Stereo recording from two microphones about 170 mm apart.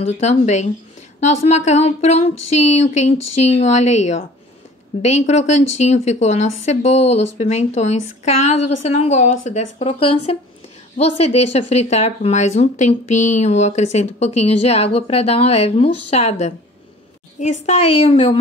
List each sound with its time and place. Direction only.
0.0 s speech: 40° left (ahead or behind)
17.6 s speech: 40° left (ahead or behind)